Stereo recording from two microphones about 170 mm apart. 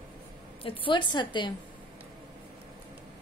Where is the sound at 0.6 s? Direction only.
30° left (ahead or behind).